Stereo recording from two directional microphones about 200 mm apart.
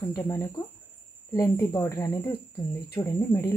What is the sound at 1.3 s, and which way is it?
Speech, 15° left (ahead or behind).